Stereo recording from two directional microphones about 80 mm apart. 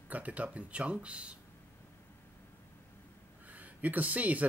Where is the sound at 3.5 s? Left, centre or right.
Centre.